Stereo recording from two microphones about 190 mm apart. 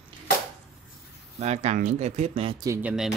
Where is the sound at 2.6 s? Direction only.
15° right (ahead or behind).